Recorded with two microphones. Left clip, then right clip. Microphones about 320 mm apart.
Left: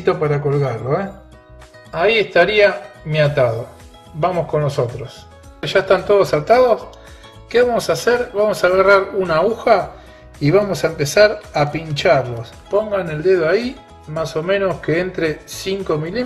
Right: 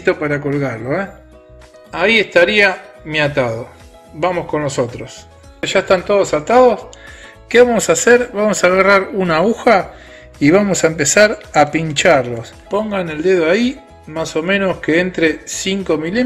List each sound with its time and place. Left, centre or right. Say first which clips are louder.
0.0 s speech: right 1 dB; right
7.4 s speech: right 4 dB; right